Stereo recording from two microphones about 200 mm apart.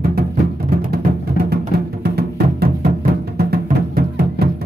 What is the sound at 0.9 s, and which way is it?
Music, 50° right (ahead or behind).